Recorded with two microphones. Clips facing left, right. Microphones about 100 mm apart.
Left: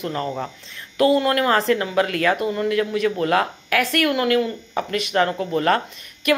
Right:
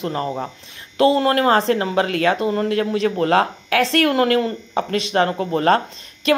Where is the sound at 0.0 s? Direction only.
25° right (ahead or behind); by 4.6 s 40° right (ahead or behind).